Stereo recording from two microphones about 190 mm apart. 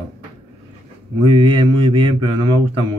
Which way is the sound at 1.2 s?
25° right (ahead or behind).